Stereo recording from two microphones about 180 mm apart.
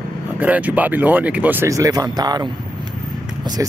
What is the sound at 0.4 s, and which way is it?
Speech, 10° right (ahead or behind).